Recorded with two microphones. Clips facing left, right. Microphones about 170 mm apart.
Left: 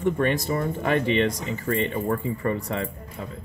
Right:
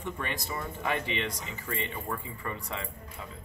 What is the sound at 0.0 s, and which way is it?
Speech, 50° left (ahead or behind).